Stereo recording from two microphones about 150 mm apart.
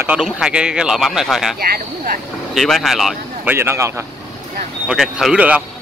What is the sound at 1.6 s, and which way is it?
Speech, 85° right.